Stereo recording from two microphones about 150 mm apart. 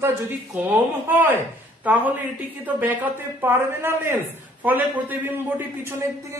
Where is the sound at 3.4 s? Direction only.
15° right (ahead or behind).